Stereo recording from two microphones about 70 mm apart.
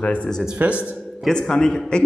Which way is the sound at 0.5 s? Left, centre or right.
Centre.